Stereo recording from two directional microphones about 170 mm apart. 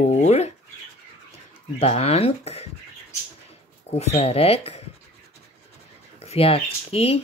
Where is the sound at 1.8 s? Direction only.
35° left (ahead or behind).